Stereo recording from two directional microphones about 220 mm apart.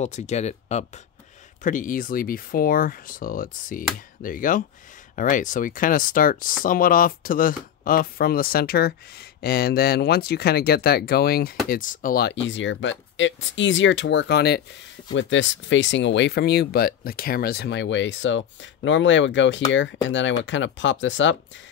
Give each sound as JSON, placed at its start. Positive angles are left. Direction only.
{"t": 0.0, "sound": "speech", "side_deg": 30}